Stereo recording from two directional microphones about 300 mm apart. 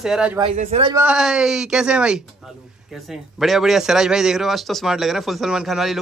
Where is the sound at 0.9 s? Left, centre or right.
Centre.